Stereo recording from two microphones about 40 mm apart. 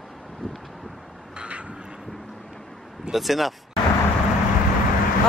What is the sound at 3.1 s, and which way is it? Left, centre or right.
Speech, centre.